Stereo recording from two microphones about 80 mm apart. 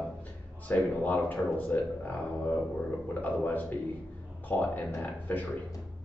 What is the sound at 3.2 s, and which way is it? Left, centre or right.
A man's voice, left.